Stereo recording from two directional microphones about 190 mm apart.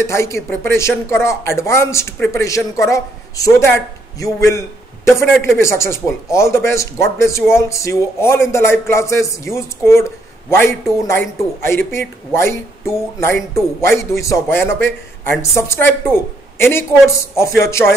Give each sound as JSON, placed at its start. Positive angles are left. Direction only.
{"t": 0.0, "sound": "speech", "side_deg": 15}